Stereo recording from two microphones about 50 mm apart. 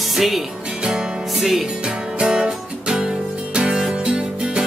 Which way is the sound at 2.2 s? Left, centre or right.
Centre.